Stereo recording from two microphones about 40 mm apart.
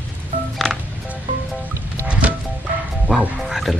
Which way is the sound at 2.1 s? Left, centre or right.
Right.